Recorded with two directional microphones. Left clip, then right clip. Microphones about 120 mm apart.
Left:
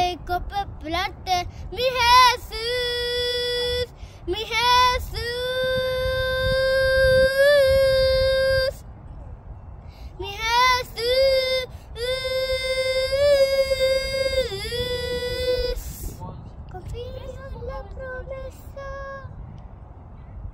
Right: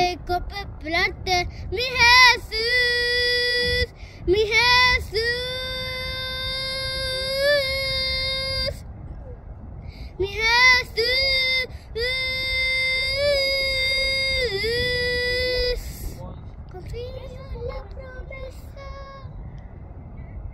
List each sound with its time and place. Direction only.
0.0 s child singing: 50° left (ahead or behind)
10.1 s child singing: 50° left (ahead or behind)
16.7 s a sound: 50° left (ahead or behind)